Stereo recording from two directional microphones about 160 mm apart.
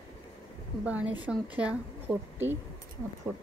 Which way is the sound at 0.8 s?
10° right (ahead or behind).